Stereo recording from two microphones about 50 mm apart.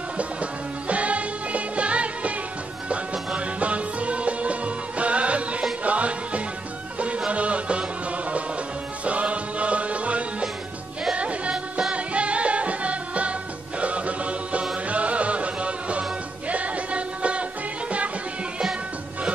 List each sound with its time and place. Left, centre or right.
0.2 s music: right
3.3 s music: right
9.0 s music: right